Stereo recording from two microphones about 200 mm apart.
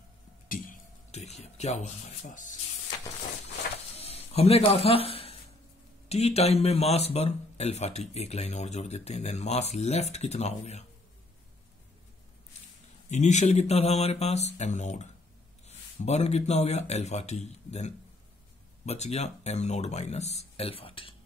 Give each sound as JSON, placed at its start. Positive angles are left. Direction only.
{"t": 0.5, "sound": "speech", "side_deg": 40}
{"t": 3.9, "sound": "a sound", "side_deg": 30}
{"t": 6.0, "sound": "speech", "side_deg": 30}
{"t": 13.1, "sound": "speech", "side_deg": 35}
{"t": 16.1, "sound": "speech", "side_deg": 35}